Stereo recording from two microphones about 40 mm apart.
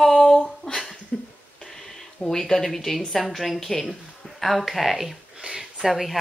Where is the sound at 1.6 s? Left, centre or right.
Centre.